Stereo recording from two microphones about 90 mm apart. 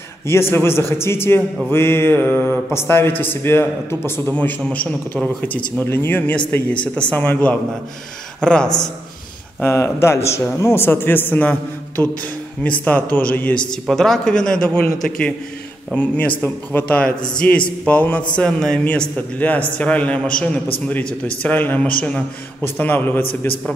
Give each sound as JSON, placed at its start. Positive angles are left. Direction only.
{"t": 0.3, "sound": "a man's voice", "side_deg": 25}
{"t": 9.6, "sound": "speech", "side_deg": 30}
{"t": 12.8, "sound": "speech", "side_deg": 20}
{"t": 13.8, "sound": "a man's voice", "side_deg": 5}